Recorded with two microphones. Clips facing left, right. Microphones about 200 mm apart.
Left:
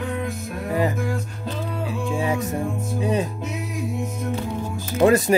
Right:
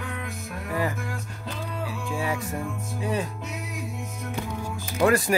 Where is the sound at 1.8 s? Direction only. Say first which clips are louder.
Left 5 dB; 20° left (ahead or behind).